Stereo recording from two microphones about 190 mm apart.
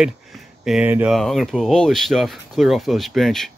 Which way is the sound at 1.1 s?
Centre (ahead or behind).